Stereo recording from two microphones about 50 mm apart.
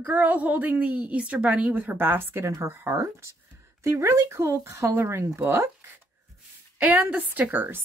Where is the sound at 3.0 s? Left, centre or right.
Right.